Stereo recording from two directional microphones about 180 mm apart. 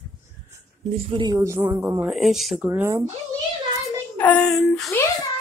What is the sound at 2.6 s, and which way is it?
Speech, 15° right (ahead or behind).